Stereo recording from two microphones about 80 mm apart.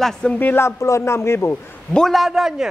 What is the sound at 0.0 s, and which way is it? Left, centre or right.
Speech, centre.